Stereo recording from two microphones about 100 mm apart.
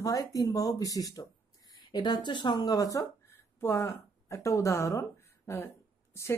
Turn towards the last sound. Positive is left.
turn(degrees=25)  # may be behind; listen again after turning